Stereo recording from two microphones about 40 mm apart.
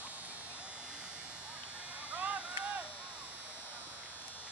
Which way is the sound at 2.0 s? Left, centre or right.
Right.